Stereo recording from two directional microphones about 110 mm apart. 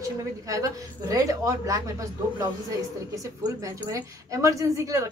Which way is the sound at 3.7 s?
30° right (ahead or behind).